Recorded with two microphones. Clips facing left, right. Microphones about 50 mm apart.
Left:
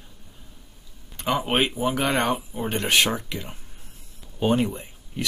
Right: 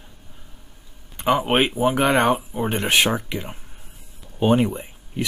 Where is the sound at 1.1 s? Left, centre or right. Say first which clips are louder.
Right 4 dB; centre.